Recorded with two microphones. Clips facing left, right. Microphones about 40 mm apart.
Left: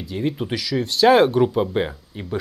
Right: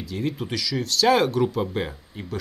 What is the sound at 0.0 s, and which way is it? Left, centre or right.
Speech, centre.